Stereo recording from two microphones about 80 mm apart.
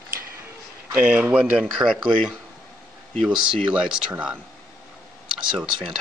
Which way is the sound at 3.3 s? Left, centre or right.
Centre.